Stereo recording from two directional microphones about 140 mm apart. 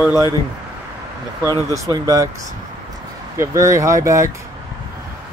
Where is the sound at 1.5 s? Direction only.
25° right (ahead or behind).